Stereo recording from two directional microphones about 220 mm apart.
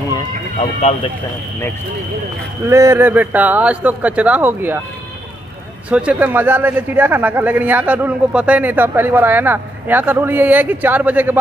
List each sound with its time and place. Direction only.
0.1 s horse: 25° left (ahead or behind)
2.7 s a man's voice: 10° right (ahead or behind)
5.9 s a man's voice: 5° right (ahead or behind)